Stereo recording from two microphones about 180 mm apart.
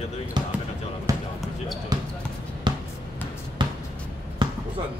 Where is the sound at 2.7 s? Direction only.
25° right (ahead or behind).